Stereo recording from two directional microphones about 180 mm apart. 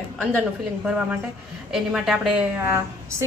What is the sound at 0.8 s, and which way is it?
A woman's voice, 10° right (ahead or behind).